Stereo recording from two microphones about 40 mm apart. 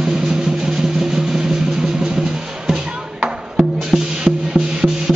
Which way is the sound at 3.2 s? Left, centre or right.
Right.